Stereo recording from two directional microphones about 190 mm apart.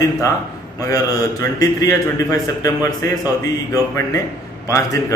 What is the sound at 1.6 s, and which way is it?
Speech, 20° left (ahead or behind).